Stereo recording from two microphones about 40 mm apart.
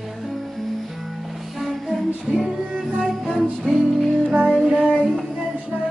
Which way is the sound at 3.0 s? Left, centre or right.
Centre.